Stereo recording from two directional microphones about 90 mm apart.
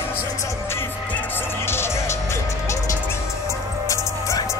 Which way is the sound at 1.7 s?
30° left (ahead or behind).